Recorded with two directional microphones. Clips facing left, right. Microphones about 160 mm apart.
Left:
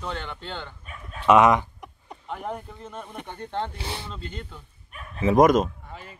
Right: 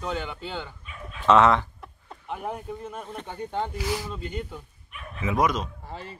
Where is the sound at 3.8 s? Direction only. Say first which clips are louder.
Right 6 dB; 30° left (ahead or behind).